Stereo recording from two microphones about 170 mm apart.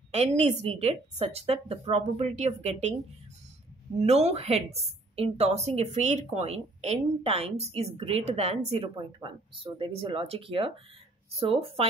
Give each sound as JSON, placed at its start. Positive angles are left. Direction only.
{"t": 0.1, "sound": "a woman's voice", "side_deg": -40}
{"t": 4.0, "sound": "a woman's voice", "side_deg": -40}